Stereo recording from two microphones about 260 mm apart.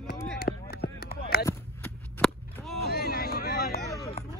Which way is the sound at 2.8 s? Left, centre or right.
Left.